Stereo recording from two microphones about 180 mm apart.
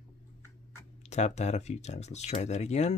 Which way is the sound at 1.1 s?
40° left (ahead or behind).